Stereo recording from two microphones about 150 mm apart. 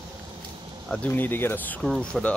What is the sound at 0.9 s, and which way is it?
Speech, 10° left (ahead or behind).